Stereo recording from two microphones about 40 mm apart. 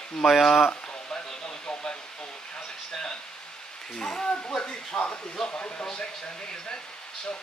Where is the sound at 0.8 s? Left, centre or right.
Left.